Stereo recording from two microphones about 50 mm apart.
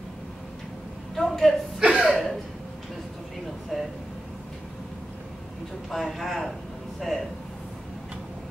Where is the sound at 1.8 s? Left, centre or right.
Centre.